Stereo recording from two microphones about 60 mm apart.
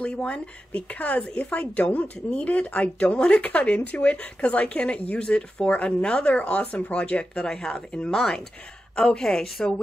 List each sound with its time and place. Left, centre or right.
0.0 s a woman's voice: centre